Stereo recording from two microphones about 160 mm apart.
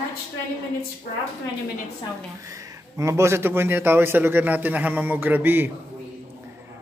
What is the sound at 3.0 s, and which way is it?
A man's voice, 15° right (ahead or behind).